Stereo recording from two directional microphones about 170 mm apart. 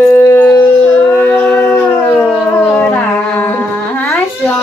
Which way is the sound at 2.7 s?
10° left (ahead or behind).